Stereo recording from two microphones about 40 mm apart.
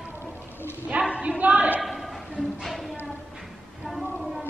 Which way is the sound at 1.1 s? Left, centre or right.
Right.